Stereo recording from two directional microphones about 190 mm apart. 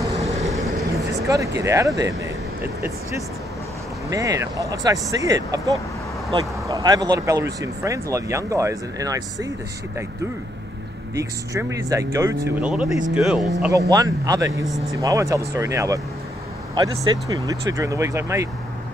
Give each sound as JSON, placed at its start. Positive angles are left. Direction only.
{"t": 0.3, "sound": "vehicle", "side_deg": -35}
{"t": 0.8, "sound": "vehicle", "side_deg": -15}
{"t": 2.0, "sound": "speech", "side_deg": -15}
{"t": 11.1, "sound": "speech", "side_deg": -15}
{"t": 13.7, "sound": "speech", "side_deg": -20}